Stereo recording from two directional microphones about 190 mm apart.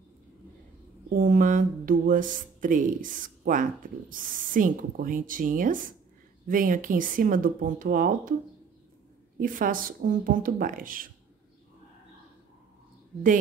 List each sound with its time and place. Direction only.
1.1 s speech: 45° right (ahead or behind)
9.4 s speech: 45° right (ahead or behind)